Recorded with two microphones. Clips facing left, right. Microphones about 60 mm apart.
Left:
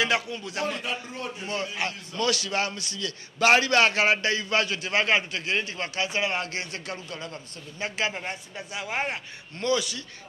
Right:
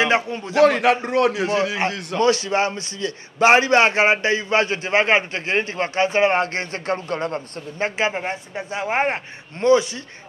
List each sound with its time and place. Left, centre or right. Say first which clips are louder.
0.0 s speech: right 6 dB; right
0.6 s a man's voice: right 16 dB; right
2.1 s a man's voice: right 8 dB; right
8.0 s speech: right 5 dB; right